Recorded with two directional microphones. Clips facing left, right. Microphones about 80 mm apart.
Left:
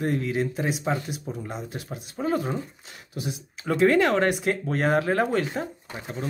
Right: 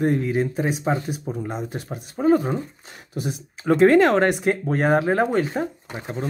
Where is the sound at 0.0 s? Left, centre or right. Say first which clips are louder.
Right 4 dB; right.